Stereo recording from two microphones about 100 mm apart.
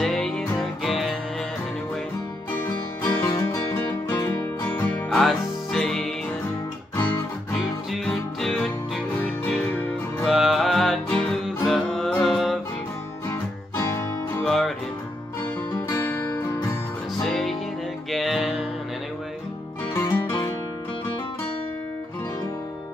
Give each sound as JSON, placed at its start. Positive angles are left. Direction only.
{"t": 0.0, "sound": "music", "side_deg": 5}
{"t": 3.0, "sound": "music", "side_deg": 25}
{"t": 5.1, "sound": "music", "side_deg": 0}
{"t": 7.9, "sound": "music", "side_deg": 0}
{"t": 9.7, "sound": "music", "side_deg": 15}
{"t": 10.2, "sound": "music", "side_deg": -5}
{"t": 13.3, "sound": "music", "side_deg": 25}
{"t": 14.4, "sound": "music", "side_deg": 0}
{"t": 15.9, "sound": "guitar", "side_deg": 25}
{"t": 17.2, "sound": "music", "side_deg": 0}
{"t": 19.9, "sound": "music", "side_deg": 25}